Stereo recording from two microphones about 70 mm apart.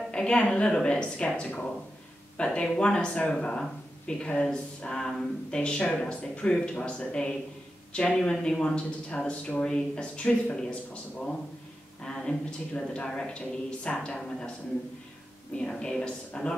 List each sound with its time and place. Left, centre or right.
0.1 s speech: centre
15.5 s speech: centre